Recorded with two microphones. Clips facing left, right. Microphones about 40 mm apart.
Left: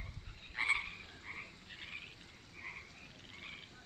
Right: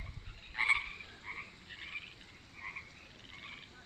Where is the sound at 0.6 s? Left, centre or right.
Centre.